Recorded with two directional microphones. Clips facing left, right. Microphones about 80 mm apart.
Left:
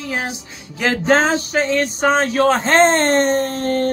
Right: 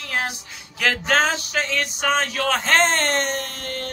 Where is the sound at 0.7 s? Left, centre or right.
Left.